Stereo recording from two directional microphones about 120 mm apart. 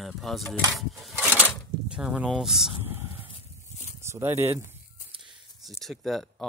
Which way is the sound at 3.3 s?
75° left (ahead or behind).